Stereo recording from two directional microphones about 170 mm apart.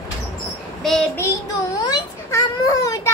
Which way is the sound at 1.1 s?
15° left (ahead or behind).